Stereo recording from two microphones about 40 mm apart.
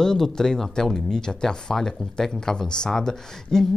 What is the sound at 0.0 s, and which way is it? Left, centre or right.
Speech, centre.